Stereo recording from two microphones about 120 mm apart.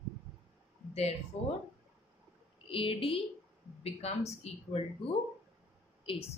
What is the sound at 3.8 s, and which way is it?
Speech, 60° left (ahead or behind).